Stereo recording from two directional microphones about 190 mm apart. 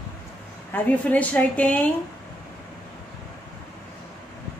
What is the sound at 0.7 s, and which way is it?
A woman's voice, 10° left (ahead or behind).